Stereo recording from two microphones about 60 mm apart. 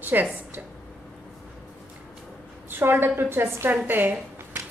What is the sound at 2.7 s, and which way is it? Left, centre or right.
A woman's voice, right.